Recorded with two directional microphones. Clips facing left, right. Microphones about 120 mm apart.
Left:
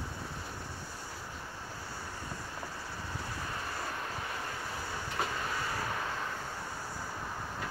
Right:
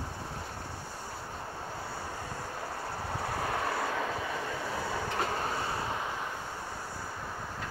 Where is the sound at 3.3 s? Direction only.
75° right (ahead or behind).